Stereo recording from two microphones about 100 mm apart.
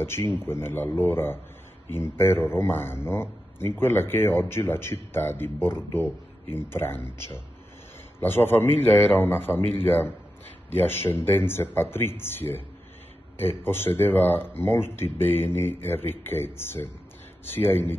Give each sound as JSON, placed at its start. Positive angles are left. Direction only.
{"t": 0.0, "sound": "speech", "side_deg": 25}
{"t": 8.2, "sound": "speech", "side_deg": 20}